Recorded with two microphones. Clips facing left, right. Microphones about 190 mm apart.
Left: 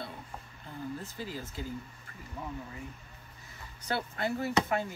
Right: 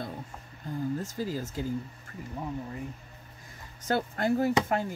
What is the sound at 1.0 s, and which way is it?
Speech, 40° right (ahead or behind).